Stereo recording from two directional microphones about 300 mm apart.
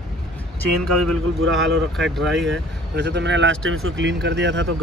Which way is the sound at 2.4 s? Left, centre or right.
Right.